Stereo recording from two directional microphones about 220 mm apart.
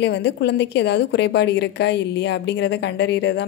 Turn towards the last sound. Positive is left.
turn(degrees=50)  # may be behind; listen again after turning